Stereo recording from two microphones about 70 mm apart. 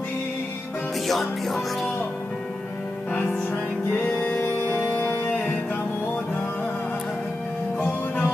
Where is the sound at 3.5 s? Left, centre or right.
Left.